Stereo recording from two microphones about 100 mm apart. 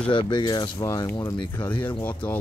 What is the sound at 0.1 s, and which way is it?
Speech, 50° left (ahead or behind).